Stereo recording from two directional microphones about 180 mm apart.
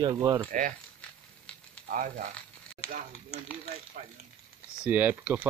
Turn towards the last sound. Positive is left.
turn(degrees=-10)  # may be behind; listen again after turning